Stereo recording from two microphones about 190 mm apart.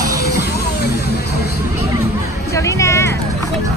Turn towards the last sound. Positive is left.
turn(degrees=15)  # may be behind; listen again after turning